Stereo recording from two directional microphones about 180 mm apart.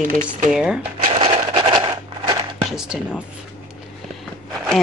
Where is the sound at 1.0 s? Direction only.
30° right (ahead or behind).